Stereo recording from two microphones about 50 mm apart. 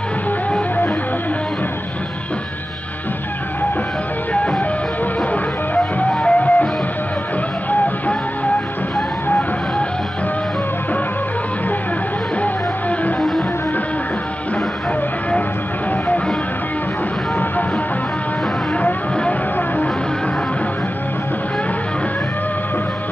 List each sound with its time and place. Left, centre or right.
5.9 s music: left